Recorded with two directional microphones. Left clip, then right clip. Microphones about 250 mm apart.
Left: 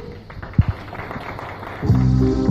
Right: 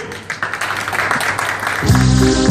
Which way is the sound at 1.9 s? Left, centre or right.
Right.